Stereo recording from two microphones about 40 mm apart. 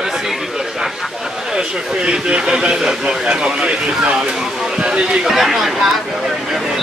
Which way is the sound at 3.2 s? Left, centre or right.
Right.